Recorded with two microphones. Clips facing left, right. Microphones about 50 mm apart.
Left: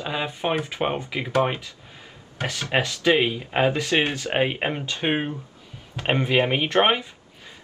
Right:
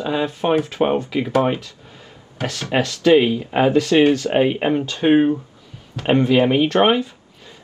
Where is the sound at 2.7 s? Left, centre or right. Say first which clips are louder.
Right 6 dB; centre.